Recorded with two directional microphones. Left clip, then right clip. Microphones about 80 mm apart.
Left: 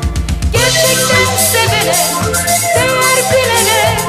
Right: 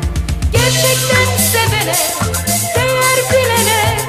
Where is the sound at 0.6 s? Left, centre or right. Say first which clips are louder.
Left 3 dB; right.